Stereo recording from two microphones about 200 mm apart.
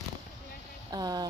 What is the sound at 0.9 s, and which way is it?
Speech, 20° right (ahead or behind).